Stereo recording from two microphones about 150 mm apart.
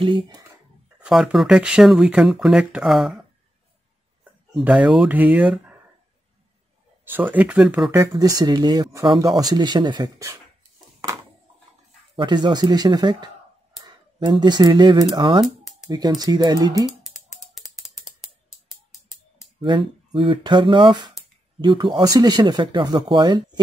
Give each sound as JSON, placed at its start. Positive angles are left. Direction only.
{"t": 0.0, "sound": "speech", "side_deg": -35}
{"t": 0.9, "sound": "speech", "side_deg": -5}
{"t": 4.2, "sound": "speech", "side_deg": -10}
{"t": 7.1, "sound": "speech", "side_deg": -10}
{"t": 8.1, "sound": "speech", "side_deg": -25}
{"t": 12.2, "sound": "speech", "side_deg": -30}
{"t": 15.4, "sound": "a sound", "side_deg": 0}
{"t": 15.9, "sound": "speech", "side_deg": -25}
{"t": 17.6, "sound": "ratchet", "side_deg": -5}
{"t": 19.6, "sound": "speech", "side_deg": -30}